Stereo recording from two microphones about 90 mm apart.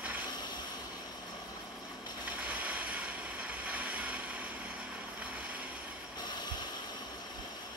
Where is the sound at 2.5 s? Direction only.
15° right (ahead or behind).